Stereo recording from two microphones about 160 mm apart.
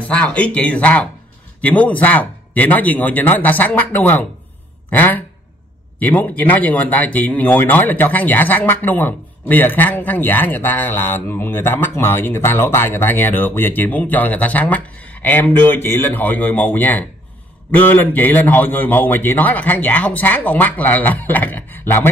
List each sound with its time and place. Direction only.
0.0 s speech: 5° left (ahead or behind)